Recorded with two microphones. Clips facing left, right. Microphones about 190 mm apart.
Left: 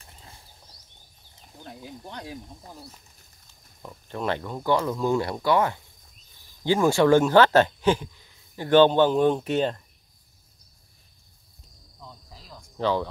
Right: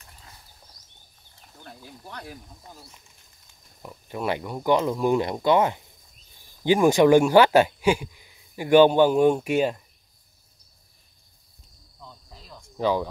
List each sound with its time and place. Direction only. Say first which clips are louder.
0.0 s a sound: left 1 dB; 30° left (ahead or behind)
1.3 s speech: left 3 dB; 20° left (ahead or behind)
3.8 s speech: right 1 dB; 10° right (ahead or behind)
12.0 s cricket: even; centre (ahead or behind)
12.7 s speech: right 1 dB; 10° right (ahead or behind)